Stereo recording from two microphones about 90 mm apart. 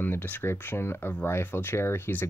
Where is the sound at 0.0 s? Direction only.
20° left (ahead or behind).